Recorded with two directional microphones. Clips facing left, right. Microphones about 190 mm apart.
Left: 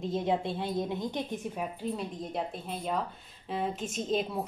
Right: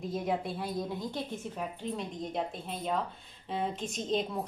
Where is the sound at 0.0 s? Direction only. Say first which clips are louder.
Left 3 dB; 25° left (ahead or behind).